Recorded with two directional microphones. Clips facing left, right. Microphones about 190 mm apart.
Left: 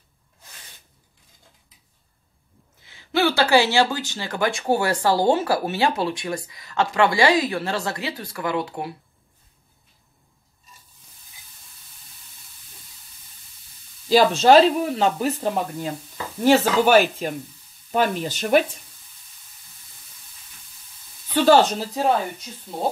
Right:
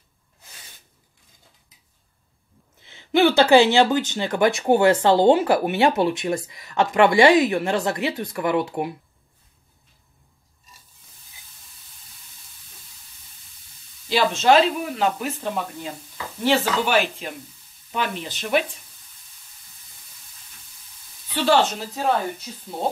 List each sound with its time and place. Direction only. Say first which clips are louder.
2.8 s speech: right 4 dB; 20° right (ahead or behind)
14.0 s speech: left 3 dB; 40° left (ahead or behind)
21.4 s speech: left 4 dB; 40° left (ahead or behind)
22.5 s speech: right 2 dB; 5° right (ahead or behind)